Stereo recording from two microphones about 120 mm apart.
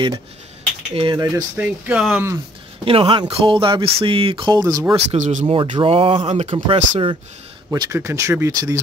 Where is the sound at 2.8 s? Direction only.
50° right (ahead or behind).